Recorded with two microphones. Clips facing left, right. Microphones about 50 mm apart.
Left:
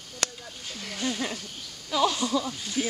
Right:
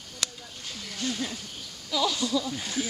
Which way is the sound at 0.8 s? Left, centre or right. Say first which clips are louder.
Left 2 dB; left.